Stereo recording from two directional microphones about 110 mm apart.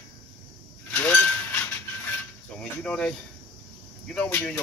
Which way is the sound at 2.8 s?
10° left (ahead or behind).